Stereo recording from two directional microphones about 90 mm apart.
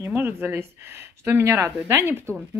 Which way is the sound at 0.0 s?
25° right (ahead or behind).